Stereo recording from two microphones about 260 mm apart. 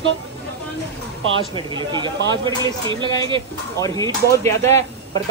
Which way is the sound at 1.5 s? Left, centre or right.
Centre.